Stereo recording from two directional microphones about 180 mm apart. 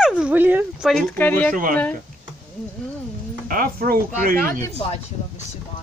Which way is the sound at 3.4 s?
55° right (ahead or behind).